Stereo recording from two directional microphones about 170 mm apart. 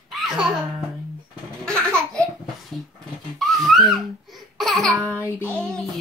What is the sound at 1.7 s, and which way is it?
Laughter, 5° left (ahead or behind).